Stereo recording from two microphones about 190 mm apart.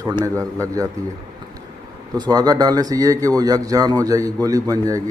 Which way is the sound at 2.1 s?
20° right (ahead or behind).